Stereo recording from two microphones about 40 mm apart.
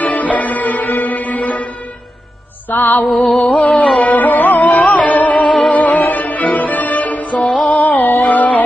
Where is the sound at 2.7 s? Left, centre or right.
Left.